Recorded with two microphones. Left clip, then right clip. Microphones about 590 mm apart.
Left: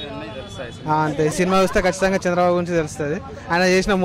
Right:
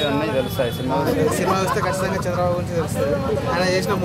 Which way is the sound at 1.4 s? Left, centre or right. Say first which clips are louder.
Left 2 dB; left.